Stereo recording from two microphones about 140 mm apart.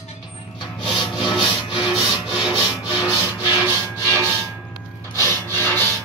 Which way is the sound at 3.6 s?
20° right (ahead or behind).